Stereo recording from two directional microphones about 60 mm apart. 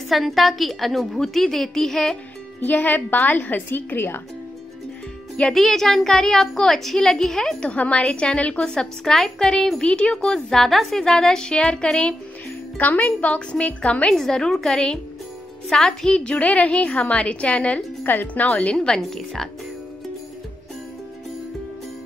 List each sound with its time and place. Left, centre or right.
0.1 s a woman's voice: centre
2.6 s a woman's voice: left
5.5 s a child's voice: centre
7.7 s a woman's voice: left
12.7 s a woman's voice: left
14.1 s a child's voice: centre
18.8 s a child's voice: centre